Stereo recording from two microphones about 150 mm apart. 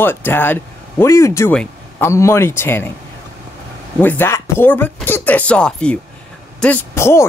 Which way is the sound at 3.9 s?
15° left (ahead or behind).